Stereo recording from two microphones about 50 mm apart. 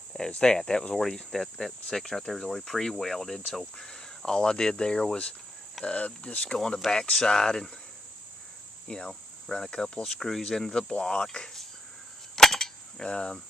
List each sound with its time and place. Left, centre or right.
0.3 s cricket: centre
1.0 s cricket: centre
3.7 s speech: centre
6.9 s cricket: centre
8.8 s cricket: centre
12.4 s a sound: centre